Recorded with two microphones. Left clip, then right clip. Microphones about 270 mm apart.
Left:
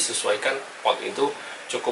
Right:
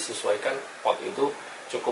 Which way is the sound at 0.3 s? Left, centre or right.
Centre.